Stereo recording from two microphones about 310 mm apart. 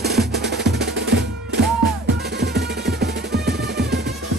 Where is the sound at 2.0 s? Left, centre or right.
Right.